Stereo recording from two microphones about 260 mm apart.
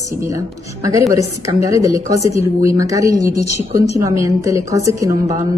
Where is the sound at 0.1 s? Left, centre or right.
Centre.